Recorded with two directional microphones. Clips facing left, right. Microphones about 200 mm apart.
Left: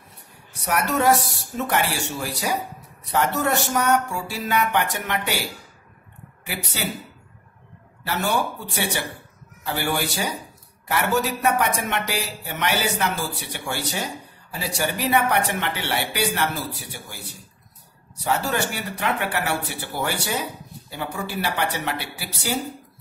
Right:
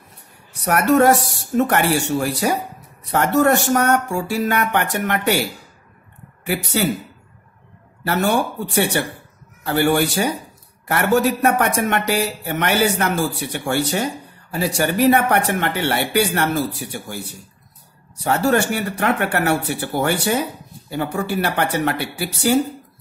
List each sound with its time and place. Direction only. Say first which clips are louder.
0.7 s speech: right 6 dB; 55° right (ahead or behind)
6.4 s speech: right 9 dB; 50° right (ahead or behind)
8.0 s speech: right 5 dB; 50° right (ahead or behind)
18.2 s speech: right 6 dB; 50° right (ahead or behind)